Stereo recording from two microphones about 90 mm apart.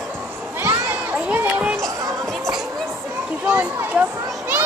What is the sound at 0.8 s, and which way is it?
Crowd, 20° right (ahead or behind).